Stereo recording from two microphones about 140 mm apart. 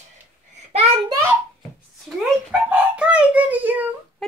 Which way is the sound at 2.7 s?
10° right (ahead or behind).